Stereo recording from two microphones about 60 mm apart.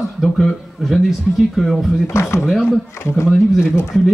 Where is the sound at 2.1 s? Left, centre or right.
Left.